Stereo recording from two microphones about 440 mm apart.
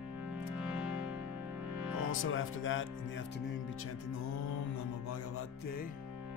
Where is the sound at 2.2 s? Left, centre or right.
Left.